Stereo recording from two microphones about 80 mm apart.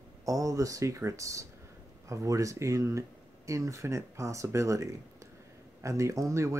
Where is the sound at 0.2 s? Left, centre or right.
Right.